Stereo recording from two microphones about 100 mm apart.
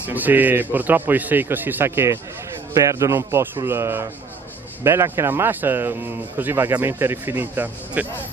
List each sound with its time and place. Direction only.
0.0 s a man's voice: 15° right (ahead or behind)